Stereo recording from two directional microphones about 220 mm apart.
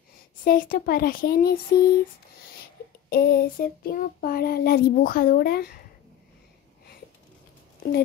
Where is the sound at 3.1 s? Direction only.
40° left (ahead or behind).